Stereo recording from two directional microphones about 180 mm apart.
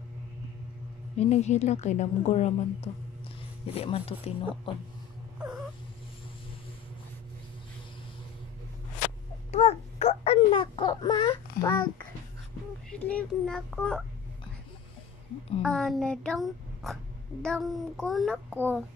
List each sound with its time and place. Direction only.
1.2 s a woman's voice: 35° left (ahead or behind)
9.5 s baby cry: 35° left (ahead or behind)
13.1 s speech: 5° left (ahead or behind)
15.6 s speech: 5° left (ahead or behind)
18.5 s speech: 10° right (ahead or behind)